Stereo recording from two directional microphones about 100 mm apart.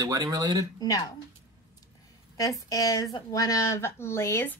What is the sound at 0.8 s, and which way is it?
Speech, 40° left (ahead or behind).